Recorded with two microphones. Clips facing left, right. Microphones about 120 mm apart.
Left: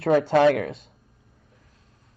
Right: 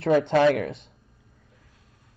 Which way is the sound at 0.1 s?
45° left (ahead or behind).